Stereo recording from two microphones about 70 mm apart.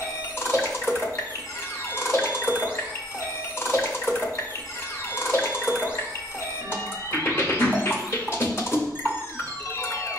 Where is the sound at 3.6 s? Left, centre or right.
Left.